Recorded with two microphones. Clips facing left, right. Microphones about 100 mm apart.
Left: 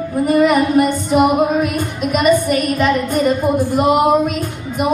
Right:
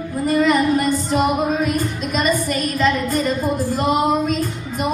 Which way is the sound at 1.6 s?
60° left (ahead or behind).